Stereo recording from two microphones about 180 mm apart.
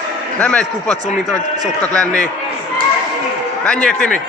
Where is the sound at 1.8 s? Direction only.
5° left (ahead or behind).